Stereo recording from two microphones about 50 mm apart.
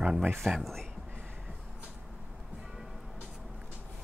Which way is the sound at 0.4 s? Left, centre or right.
Centre.